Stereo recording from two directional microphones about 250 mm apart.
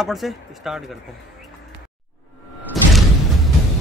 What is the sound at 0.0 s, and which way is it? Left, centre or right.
Speech, centre.